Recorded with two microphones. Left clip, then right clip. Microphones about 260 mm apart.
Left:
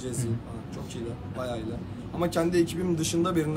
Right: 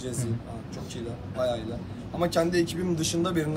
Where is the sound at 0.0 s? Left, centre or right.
Left.